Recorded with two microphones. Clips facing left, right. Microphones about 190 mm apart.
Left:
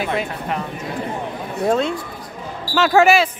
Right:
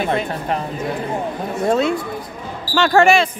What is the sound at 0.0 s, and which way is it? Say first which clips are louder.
Speech: right 2 dB; 5° left (ahead or behind).